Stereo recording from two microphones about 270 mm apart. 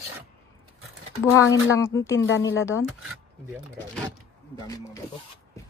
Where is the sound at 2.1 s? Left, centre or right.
Left.